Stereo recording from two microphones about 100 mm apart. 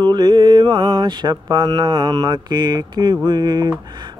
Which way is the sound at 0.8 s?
35° right (ahead or behind).